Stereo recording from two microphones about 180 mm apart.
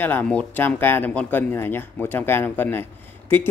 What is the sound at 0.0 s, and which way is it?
Speech, 10° left (ahead or behind).